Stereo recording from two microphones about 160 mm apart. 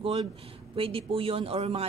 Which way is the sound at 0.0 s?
35° right (ahead or behind).